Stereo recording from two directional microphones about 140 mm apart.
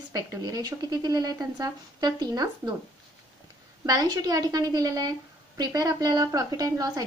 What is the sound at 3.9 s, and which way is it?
A woman's voice, 30° right (ahead or behind).